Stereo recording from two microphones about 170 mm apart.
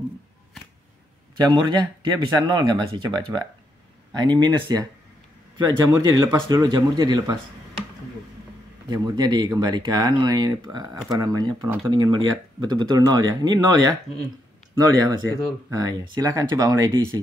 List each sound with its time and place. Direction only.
1.3 s speech: 25° right (ahead or behind)
8.9 s speech: 25° right (ahead or behind)
15.0 s speech: 20° right (ahead or behind)